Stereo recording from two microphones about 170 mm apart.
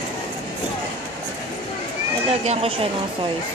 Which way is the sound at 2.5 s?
35° right (ahead or behind).